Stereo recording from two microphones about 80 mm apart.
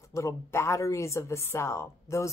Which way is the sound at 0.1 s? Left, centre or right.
Left.